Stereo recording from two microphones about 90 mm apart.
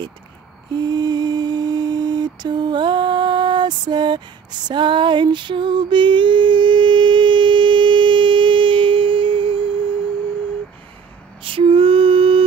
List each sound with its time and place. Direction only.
0.7 s mantra: 50° right (ahead or behind); by 9.9 s 75° right (ahead or behind)
11.4 s lullaby: 90° right